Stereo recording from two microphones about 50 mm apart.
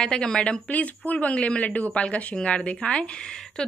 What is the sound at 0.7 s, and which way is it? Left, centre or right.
A woman's voice, left.